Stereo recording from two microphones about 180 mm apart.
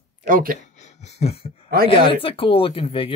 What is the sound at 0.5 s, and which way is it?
Speech, 40° left (ahead or behind).